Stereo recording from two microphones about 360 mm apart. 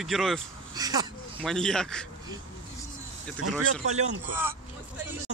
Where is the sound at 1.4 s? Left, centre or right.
Centre.